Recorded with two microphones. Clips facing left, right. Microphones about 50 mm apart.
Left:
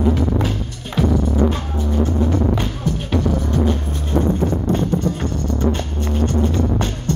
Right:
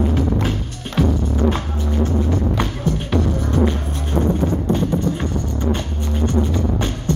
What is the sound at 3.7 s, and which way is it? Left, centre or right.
Music, right.